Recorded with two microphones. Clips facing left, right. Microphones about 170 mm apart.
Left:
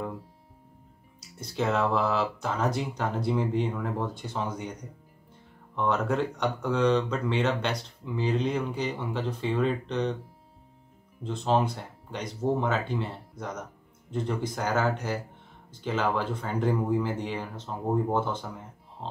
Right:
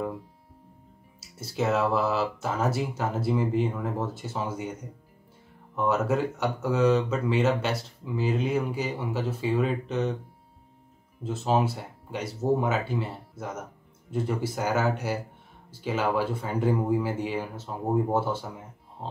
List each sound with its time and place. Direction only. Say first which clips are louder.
1.2 s speech: right 1 dB; 5° right (ahead or behind)
5.8 s speech: right 2 dB; 5° right (ahead or behind)
11.2 s speech: right 1 dB; 5° right (ahead or behind)